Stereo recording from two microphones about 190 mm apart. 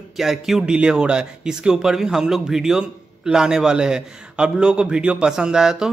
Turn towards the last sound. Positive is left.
turn(degrees=-5)  # may be behind; listen again after turning